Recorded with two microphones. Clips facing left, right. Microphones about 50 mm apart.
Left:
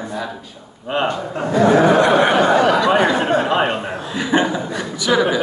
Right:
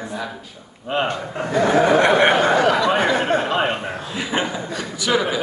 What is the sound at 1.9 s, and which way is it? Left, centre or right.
Speech, right.